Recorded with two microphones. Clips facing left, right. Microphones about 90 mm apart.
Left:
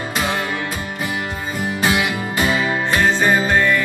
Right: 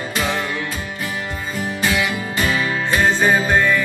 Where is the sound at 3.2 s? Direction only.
5° right (ahead or behind).